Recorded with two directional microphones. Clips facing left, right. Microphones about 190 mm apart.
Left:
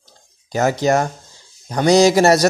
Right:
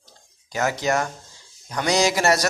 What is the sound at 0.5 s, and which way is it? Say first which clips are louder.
A man's voice: left 6 dB; 35° left (ahead or behind).